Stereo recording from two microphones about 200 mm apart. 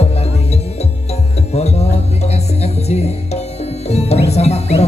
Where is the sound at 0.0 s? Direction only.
30° left (ahead or behind).